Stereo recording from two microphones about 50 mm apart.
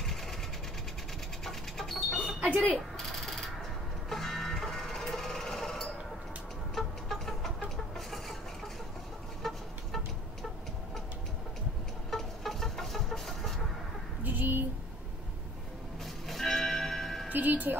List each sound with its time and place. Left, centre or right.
0.0 s sewing machine: centre
1.4 s rodents: centre
2.4 s speech: right
3.0 s a sound: centre
7.7 s chicken: centre
9.4 s vehicle: centre
12.1 s a sound: centre
14.2 s a sound: right
16.3 s music: centre
17.3 s music: right